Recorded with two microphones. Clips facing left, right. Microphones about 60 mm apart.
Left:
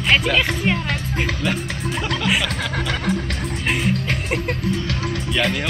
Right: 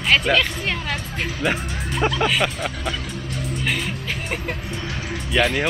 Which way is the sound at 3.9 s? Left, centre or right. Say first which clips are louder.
Left 5 dB; left.